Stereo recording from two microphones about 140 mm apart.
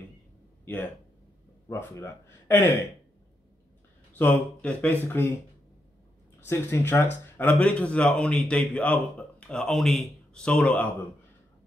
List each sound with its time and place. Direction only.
1.7 s speech: 20° left (ahead or behind)
4.1 s speech: 10° left (ahead or behind)
6.4 s speech: 15° left (ahead or behind)